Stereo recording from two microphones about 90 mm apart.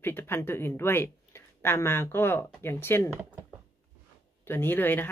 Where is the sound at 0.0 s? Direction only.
25° left (ahead or behind).